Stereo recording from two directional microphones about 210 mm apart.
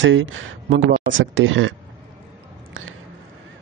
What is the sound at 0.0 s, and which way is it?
A man's voice, 65° right (ahead or behind).